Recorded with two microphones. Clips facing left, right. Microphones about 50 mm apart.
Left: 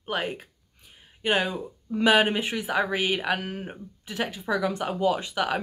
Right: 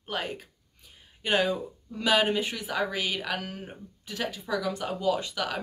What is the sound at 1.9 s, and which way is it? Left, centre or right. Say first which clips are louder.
Speech: left 4 dB; left.